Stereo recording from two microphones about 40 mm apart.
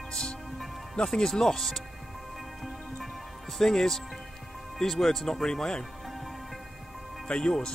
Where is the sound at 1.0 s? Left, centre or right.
Centre.